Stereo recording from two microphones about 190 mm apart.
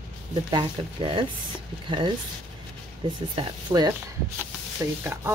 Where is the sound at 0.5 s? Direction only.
25° right (ahead or behind).